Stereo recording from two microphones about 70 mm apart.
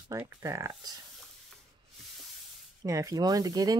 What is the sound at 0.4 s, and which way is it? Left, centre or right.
Speech, right.